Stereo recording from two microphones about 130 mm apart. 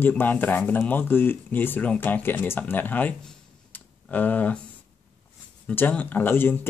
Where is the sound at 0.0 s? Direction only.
15° left (ahead or behind).